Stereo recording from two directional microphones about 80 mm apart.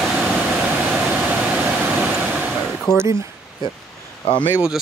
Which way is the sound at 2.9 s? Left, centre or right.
Right.